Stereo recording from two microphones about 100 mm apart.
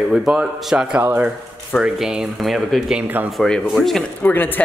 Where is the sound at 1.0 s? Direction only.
20° right (ahead or behind).